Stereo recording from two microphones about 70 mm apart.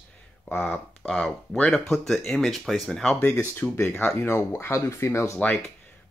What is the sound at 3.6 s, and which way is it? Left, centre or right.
Speech, centre.